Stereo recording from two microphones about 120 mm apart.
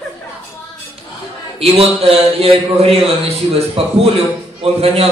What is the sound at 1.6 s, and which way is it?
A man's voice, 55° right (ahead or behind).